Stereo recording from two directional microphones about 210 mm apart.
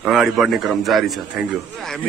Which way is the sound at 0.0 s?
Centre (ahead or behind).